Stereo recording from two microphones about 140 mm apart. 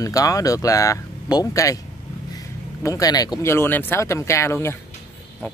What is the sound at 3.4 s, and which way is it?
Speech, 15° left (ahead or behind).